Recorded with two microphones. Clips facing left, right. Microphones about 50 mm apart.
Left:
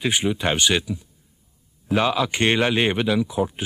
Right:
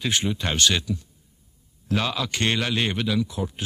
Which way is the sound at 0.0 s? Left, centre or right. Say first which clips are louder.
Left 4 dB; centre.